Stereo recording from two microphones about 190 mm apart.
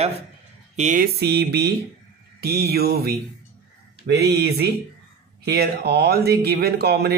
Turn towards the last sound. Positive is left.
turn(degrees=-55)  # may be behind; listen again after turning